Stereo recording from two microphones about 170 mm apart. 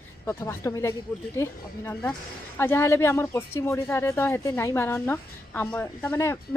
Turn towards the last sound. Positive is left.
turn(degrees=15)  # may be behind; listen again after turning